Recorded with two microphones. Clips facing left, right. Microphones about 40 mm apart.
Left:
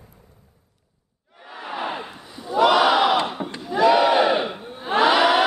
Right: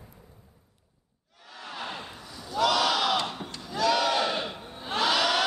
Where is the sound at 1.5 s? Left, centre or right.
Left.